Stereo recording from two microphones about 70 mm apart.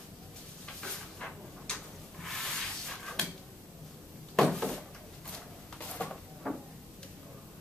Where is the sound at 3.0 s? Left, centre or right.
Centre.